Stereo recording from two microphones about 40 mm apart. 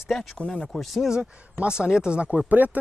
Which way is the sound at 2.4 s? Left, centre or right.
Right.